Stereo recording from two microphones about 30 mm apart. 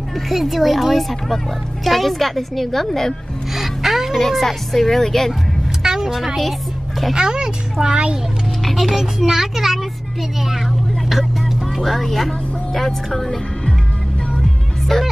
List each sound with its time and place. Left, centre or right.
0.3 s a woman's voice: centre
3.5 s music: centre
4.2 s a woman's voice: centre
5.8 s a sound: right
7.2 s a child's voice: right
8.7 s speech: centre
11.8 s a woman's voice: centre
14.4 s music: centre